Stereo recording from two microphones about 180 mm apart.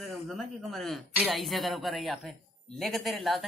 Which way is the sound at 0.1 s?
Centre (ahead or behind).